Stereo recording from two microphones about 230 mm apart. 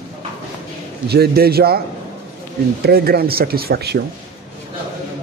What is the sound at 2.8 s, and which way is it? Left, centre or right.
Speech, right.